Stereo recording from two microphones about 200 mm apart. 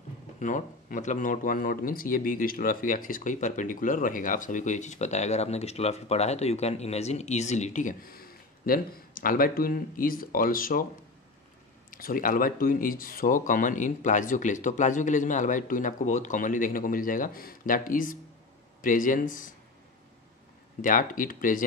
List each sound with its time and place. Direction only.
0.4 s speech: 40° left (ahead or behind)
11.9 s speech: 45° left (ahead or behind)
20.8 s speech: 40° left (ahead or behind)